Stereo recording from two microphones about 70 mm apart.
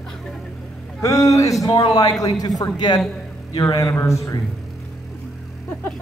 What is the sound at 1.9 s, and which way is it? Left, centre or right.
Speech, left.